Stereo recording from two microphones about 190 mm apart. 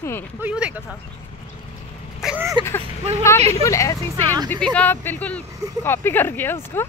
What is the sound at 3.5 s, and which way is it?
Speech, 15° left (ahead or behind).